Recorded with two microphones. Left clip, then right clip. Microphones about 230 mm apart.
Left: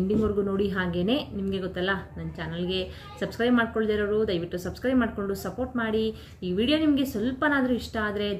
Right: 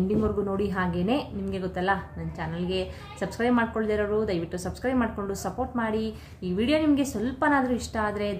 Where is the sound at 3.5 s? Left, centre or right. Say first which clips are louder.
Left 1 dB; centre.